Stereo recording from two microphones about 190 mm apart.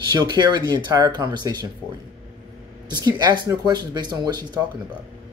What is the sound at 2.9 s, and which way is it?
Speech, 20° right (ahead or behind).